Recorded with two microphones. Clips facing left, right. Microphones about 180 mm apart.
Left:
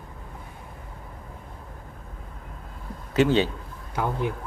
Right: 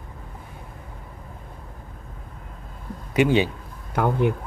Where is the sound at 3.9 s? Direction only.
60° right (ahead or behind).